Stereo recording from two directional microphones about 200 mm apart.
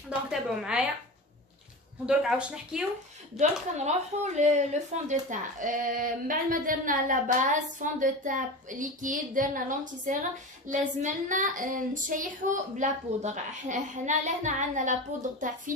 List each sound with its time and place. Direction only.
0.1 s speech: 5° right (ahead or behind)
2.0 s speech: 5° right (ahead or behind)
3.7 s a woman's voice: 35° right (ahead or behind)